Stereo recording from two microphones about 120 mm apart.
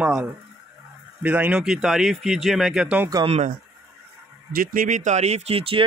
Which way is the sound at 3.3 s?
65° right (ahead or behind).